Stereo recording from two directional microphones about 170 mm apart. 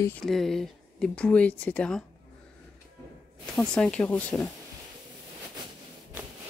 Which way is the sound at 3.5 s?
5° left (ahead or behind).